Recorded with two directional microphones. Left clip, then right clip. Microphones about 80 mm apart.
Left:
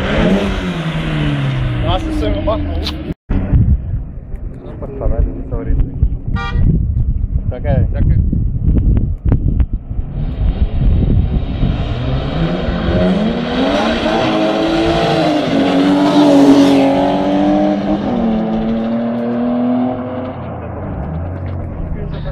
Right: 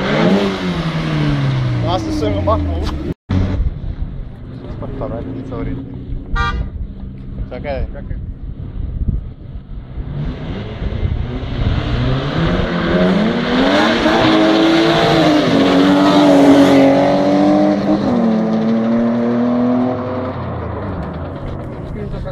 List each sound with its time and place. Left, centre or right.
0.0 s vehicle: right
2.0 s speech: right
2.7 s vehicle: right
5.0 s vehicle: left
10.8 s vehicle: right
15.6 s vehicle: centre
16.3 s vehicle: centre
16.6 s vehicle: right
20.8 s music: right